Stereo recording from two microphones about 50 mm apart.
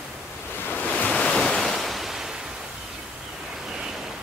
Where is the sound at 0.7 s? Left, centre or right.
Left.